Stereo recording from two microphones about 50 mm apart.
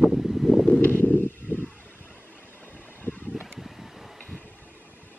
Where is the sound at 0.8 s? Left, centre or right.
Left.